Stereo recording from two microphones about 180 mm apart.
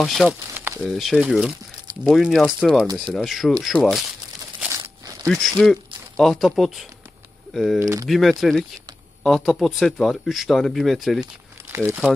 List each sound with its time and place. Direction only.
0.0 s speech: centre (ahead or behind)
4.6 s crumpling: 15° right (ahead or behind)
5.2 s speech: centre (ahead or behind)
7.8 s speech: 20° right (ahead or behind)
8.1 s speech: centre (ahead or behind)
11.7 s speech: 10° right (ahead or behind)